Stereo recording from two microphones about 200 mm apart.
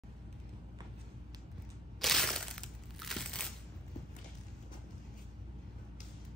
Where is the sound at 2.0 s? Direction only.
Centre (ahead or behind).